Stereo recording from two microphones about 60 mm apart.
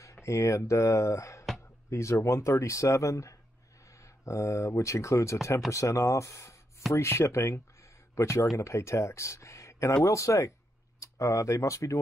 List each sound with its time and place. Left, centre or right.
0.0 s speech: left